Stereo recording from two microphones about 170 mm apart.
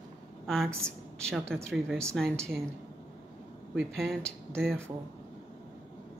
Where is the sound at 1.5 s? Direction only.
5° left (ahead or behind).